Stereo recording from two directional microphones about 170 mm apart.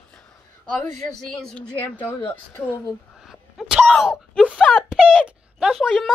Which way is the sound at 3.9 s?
Centre (ahead or behind).